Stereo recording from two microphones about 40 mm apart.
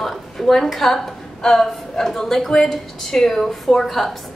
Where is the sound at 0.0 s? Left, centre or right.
Centre.